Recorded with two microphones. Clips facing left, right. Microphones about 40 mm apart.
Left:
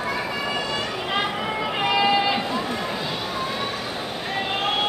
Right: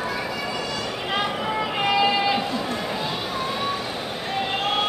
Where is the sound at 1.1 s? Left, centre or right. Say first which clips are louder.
Right 1 dB; centre.